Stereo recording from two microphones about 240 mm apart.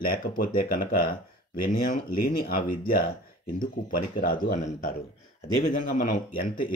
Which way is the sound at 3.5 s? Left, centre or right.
Left.